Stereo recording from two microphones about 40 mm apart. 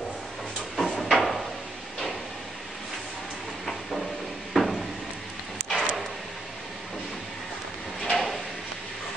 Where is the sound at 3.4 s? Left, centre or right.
Centre.